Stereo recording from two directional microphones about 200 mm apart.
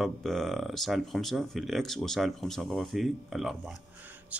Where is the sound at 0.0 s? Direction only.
Centre (ahead or behind).